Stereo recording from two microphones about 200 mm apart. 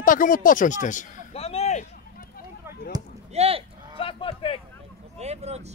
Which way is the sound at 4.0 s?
25° left (ahead or behind).